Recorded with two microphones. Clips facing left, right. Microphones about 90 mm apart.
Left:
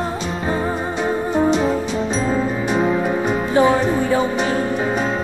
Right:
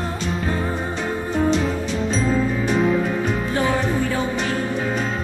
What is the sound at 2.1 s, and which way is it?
Music, 15° left (ahead or behind).